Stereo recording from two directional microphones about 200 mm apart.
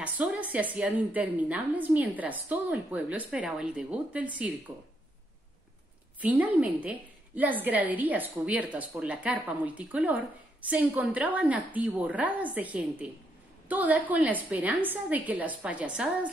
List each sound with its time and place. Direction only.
0.0 s a woman's voice: 10° right (ahead or behind)
6.2 s a woman's voice: 10° right (ahead or behind)